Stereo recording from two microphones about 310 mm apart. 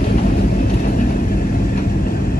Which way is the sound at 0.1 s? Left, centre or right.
Left.